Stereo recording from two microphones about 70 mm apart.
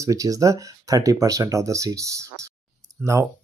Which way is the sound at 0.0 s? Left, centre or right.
Right.